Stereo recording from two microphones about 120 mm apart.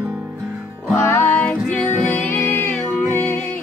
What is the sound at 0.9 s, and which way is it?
Music, 20° left (ahead or behind).